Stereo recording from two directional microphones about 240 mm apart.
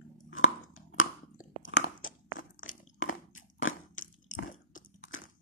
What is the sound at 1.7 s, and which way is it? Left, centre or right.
Crunch, left.